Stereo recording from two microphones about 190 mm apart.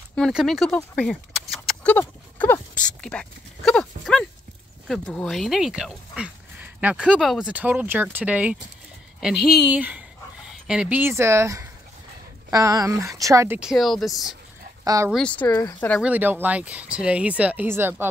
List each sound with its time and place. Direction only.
0.1 s speech: centre (ahead or behind)
9.7 s speech: 10° right (ahead or behind)
13.6 s speech: centre (ahead or behind)
16.0 s speech: 10° right (ahead or behind)